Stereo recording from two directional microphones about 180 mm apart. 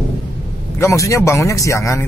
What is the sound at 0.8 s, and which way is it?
Speech, 15° left (ahead or behind).